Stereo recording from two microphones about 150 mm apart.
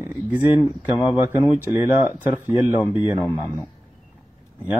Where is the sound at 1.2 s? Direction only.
15° right (ahead or behind).